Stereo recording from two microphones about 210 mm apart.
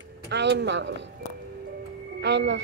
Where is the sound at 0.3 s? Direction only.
55° right (ahead or behind).